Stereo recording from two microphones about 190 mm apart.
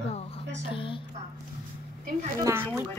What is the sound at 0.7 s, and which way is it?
Speech, 25° left (ahead or behind).